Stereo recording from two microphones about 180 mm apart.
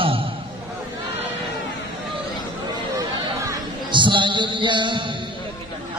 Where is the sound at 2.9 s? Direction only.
20° right (ahead or behind).